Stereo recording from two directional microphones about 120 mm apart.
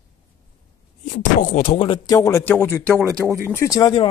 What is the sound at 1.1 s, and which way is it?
Speech, 90° left.